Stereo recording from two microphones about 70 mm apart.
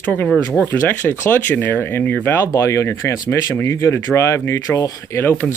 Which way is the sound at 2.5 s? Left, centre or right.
Left.